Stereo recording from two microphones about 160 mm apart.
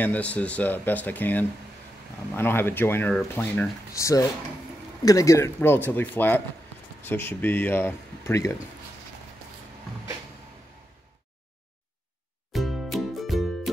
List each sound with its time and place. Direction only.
0.0 s speech: 10° left (ahead or behind)
12.5 s music: centre (ahead or behind)